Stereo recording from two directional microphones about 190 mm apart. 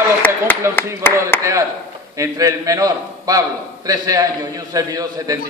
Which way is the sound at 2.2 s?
20° right (ahead or behind).